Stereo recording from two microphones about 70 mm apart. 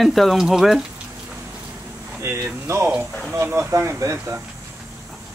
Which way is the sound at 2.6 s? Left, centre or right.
Right.